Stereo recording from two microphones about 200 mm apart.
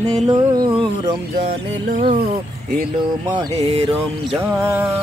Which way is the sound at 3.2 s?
20° right (ahead or behind).